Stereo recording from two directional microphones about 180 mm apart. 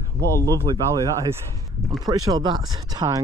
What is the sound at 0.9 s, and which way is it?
Speech, 20° right (ahead or behind).